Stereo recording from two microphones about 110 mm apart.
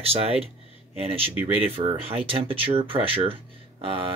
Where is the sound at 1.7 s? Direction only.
60° right (ahead or behind).